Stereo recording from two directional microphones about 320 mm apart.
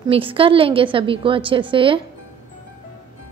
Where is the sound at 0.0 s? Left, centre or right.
Centre.